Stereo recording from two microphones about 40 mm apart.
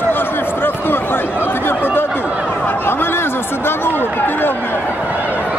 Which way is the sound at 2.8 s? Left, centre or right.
Left.